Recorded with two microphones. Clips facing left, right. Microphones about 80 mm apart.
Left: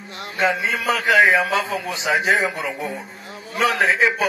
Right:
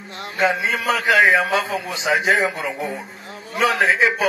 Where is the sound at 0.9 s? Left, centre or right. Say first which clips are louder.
Even; centre.